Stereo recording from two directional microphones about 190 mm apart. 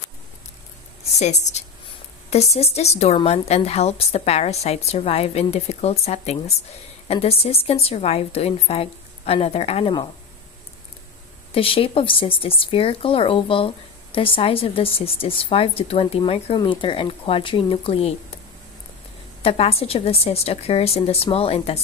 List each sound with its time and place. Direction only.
1.1 s a woman's voice: 35° left (ahead or behind)
11.5 s a woman's voice: 30° left (ahead or behind)
19.4 s a woman's voice: 30° left (ahead or behind)